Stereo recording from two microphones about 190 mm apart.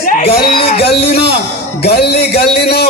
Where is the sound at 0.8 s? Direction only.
60° left (ahead or behind).